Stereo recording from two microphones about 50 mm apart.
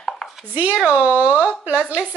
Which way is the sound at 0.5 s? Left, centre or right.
Right.